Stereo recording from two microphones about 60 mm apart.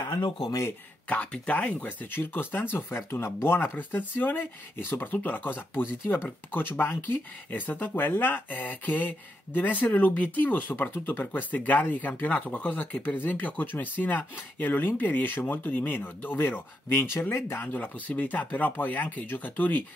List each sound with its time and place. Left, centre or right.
0.1 s speech: left
1.0 s speech: left
3.0 s speech: left
3.4 s speech: left
6.5 s speech: left
17.7 s speech: left